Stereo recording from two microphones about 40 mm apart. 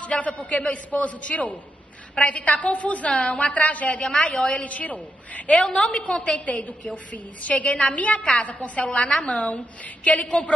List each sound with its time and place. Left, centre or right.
0.0 s a woman's voice: left